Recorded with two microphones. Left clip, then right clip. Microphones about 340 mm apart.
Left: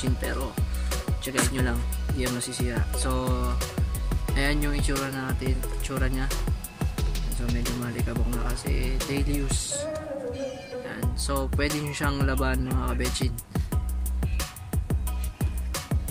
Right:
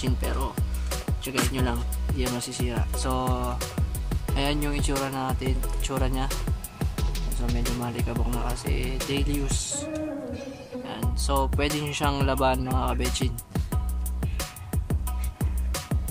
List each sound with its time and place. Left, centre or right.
0.0 s speech: centre
10.9 s music: centre